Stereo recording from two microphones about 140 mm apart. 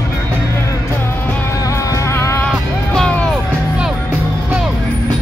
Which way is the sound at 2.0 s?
20° left (ahead or behind).